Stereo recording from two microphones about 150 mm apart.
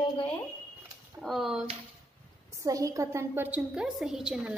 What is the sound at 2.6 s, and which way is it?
Speech, 20° right (ahead or behind).